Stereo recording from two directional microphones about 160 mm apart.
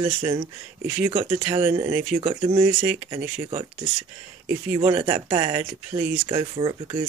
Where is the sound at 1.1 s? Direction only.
40° right (ahead or behind).